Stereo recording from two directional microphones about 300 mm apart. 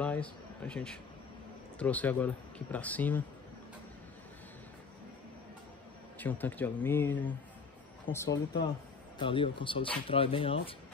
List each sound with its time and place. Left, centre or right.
0.0 s speech: centre
6.1 s speech: centre